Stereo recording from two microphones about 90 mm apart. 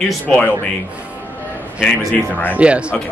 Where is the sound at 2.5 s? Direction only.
15° right (ahead or behind).